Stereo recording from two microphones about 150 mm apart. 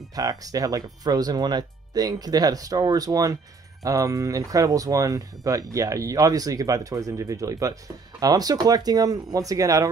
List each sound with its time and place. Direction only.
0.1 s speech: 25° right (ahead or behind)